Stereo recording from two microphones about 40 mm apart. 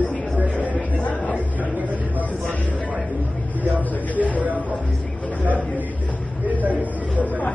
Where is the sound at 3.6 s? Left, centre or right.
Right.